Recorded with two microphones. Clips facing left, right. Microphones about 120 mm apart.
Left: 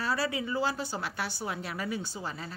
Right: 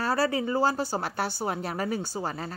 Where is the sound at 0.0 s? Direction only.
40° right (ahead or behind).